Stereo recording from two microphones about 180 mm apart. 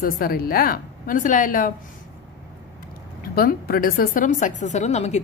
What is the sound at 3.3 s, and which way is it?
Speech, 55° left (ahead or behind).